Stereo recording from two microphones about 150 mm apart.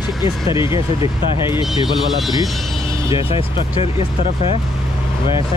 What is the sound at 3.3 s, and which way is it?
Speech, 40° left (ahead or behind).